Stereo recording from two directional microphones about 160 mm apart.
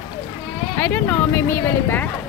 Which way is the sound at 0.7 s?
10° left (ahead or behind).